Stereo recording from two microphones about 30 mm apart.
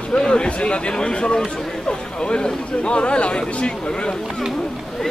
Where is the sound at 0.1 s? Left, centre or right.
Left.